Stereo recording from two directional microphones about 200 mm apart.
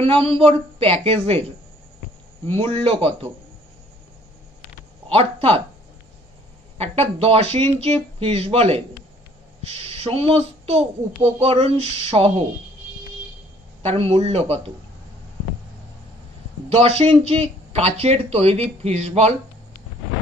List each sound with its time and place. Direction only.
0.0 s a woman's voice: 30° right (ahead or behind)
2.4 s a woman's voice: 30° right (ahead or behind)
5.0 s speech: 30° right (ahead or behind)
6.8 s a child's voice: 30° right (ahead or behind)
13.8 s speech: 30° right (ahead or behind)
16.6 s speech: 30° right (ahead or behind)